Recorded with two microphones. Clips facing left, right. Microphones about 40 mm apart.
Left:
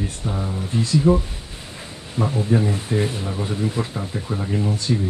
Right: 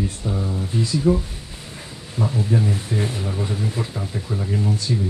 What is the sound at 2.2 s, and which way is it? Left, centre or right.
Speech, left.